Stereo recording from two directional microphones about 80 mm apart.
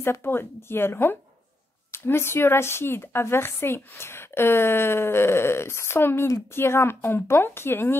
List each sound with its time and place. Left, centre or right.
0.0 s a woman's voice: left